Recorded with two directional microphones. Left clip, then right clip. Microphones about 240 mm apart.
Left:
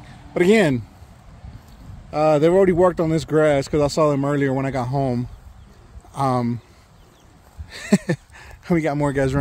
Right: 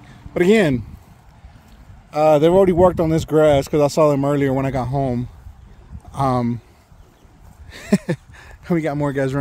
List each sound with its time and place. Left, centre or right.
0.0 s a sound: centre
2.0 s speech: centre
7.7 s speech: centre